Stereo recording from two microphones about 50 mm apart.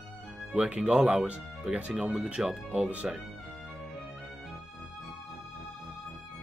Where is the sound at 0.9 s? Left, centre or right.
Centre.